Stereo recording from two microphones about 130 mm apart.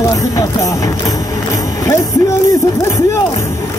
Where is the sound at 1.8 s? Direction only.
25° left (ahead or behind).